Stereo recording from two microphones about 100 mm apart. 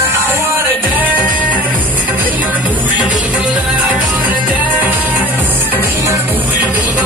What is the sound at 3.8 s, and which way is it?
Music, 15° right (ahead or behind).